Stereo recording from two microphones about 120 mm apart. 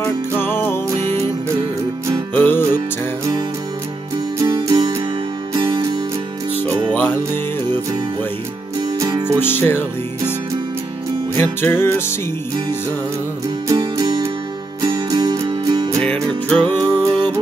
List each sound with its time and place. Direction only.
0.0 s music: 20° left (ahead or behind)
2.3 s music: 15° left (ahead or behind)
4.6 s music: 35° right (ahead or behind)
6.9 s music: 15° left (ahead or behind)
9.0 s music: 30° right (ahead or behind)
9.4 s music: 15° left (ahead or behind)
11.3 s music: 20° left (ahead or behind)
13.7 s music: 30° right (ahead or behind)
16.0 s music: 10° left (ahead or behind)
16.6 s music: 35° right (ahead or behind)